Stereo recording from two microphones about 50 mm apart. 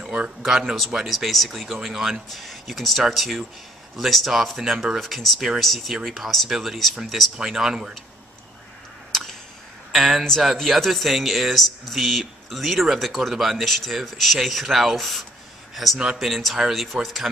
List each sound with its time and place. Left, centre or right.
0.0 s a sound: centre
0.4 s speech: centre
9.1 s a sound: centre
9.9 s speech: centre
16.0 s speech: centre
16.3 s speech: centre